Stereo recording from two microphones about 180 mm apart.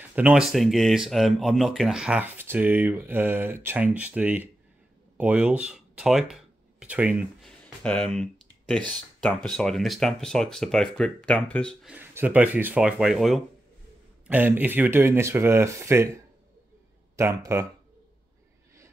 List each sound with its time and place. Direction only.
0.1 s speech: 5° right (ahead or behind)
7.4 s speech: 5° left (ahead or behind)
11.9 s speech: 10° right (ahead or behind)
17.2 s speech: 15° right (ahead or behind)